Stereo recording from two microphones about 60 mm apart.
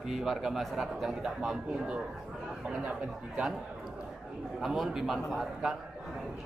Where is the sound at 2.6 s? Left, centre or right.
Right.